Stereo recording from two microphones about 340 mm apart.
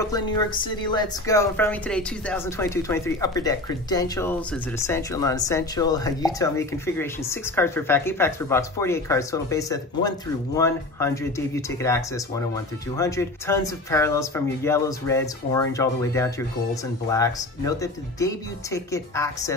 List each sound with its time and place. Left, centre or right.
0.0 s speech: centre